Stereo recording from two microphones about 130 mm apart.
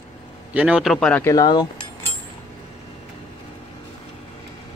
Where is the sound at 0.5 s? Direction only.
5° right (ahead or behind).